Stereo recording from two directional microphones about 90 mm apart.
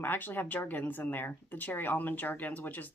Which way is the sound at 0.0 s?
20° left (ahead or behind).